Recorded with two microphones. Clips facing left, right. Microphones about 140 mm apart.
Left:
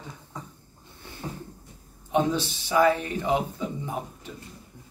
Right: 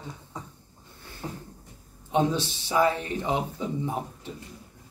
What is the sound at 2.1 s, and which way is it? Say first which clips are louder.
A man's voice: even; 25° right (ahead or behind).